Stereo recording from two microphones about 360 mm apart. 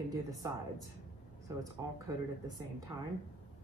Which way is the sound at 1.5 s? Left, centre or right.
Centre.